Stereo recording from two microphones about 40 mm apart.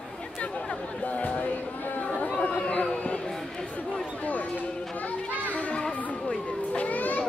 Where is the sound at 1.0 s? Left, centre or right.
Left.